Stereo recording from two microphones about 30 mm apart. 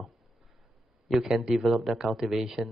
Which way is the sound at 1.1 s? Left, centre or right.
Centre.